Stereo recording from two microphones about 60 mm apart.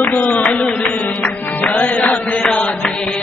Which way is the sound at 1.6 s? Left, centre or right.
Left.